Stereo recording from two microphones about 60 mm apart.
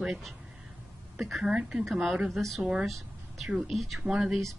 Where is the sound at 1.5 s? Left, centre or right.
Centre.